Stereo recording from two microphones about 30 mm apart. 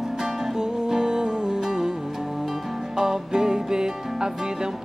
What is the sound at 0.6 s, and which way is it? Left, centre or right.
Music, right.